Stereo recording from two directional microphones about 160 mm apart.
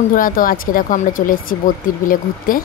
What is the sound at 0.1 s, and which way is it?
Speech, 60° left (ahead or behind).